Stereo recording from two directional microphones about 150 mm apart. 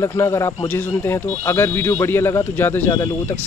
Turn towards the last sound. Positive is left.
turn(degrees=15)  # may be behind; listen again after turning